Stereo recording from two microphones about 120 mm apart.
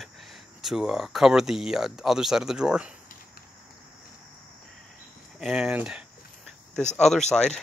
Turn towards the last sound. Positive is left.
turn(degrees=5)  # may be behind; listen again after turning